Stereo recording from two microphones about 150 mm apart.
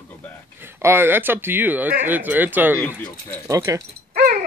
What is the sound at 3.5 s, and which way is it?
Speech, 20° right (ahead or behind).